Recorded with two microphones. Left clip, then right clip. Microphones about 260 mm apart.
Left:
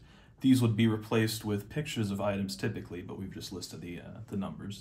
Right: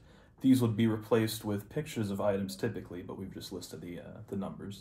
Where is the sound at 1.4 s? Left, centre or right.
Left.